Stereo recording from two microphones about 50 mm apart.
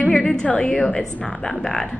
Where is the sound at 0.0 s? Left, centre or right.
Centre.